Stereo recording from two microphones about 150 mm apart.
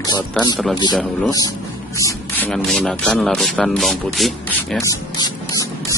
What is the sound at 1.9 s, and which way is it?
Speech, 15° left (ahead or behind).